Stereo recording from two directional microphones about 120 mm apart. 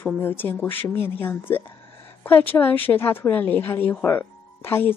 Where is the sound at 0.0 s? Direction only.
20° left (ahead or behind).